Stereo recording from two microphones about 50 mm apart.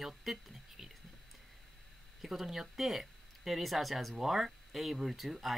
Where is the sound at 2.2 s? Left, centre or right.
Centre.